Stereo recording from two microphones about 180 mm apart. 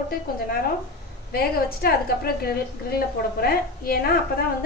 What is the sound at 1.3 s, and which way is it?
A woman's voice, 60° left (ahead or behind).